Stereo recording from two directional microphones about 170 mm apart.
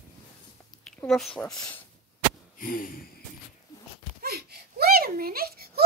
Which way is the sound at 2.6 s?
55° left (ahead or behind).